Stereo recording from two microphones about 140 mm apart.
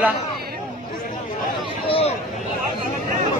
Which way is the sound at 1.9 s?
45° left (ahead or behind).